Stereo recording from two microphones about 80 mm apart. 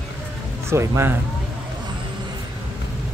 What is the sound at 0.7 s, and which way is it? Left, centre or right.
Speech, right.